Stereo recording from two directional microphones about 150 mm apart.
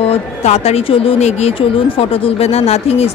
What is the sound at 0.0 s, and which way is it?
Speech, 45° left (ahead or behind).